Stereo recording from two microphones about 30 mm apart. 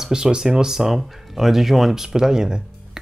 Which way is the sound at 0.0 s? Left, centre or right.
Right.